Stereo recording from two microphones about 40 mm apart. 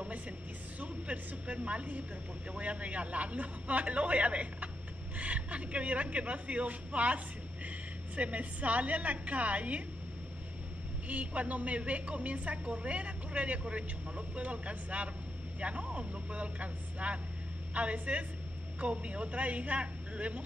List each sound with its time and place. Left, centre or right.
0.7 s a woman's voice: right
8.2 s a woman's voice: right
11.1 s a woman's voice: right